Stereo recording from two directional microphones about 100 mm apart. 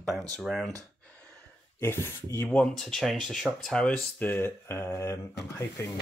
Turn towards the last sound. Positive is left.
turn(degrees=30)  # may be behind; listen again after turning